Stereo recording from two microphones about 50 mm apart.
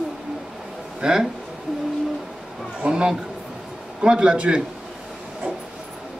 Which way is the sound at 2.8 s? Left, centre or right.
Centre.